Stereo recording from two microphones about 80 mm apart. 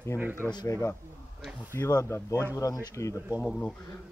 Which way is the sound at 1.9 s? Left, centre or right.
Left.